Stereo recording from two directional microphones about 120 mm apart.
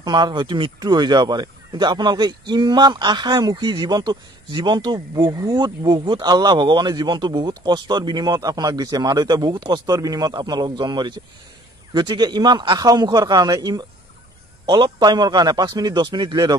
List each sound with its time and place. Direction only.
0.0 s speech: 40° right (ahead or behind)